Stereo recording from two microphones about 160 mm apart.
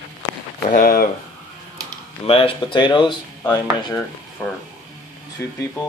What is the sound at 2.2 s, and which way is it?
Speech, 35° left (ahead or behind).